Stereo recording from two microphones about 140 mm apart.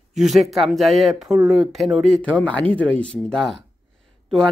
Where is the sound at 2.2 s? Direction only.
10° left (ahead or behind).